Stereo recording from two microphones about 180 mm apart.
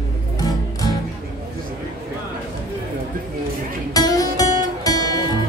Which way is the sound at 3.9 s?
20° left (ahead or behind).